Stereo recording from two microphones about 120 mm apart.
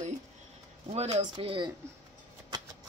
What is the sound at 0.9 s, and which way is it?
Speech, 55° right (ahead or behind).